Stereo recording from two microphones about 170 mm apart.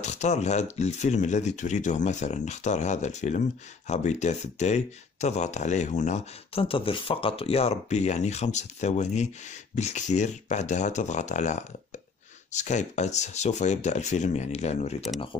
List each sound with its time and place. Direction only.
0.0 s speech: 45° left (ahead or behind)